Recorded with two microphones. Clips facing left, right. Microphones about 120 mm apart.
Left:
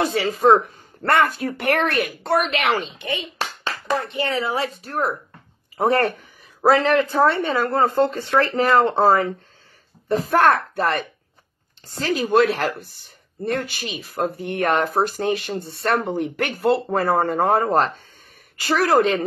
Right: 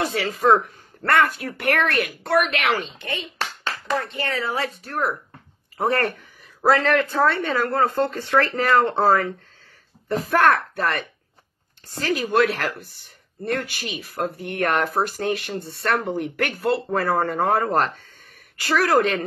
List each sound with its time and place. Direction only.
0.0 s speech: 25° left (ahead or behind)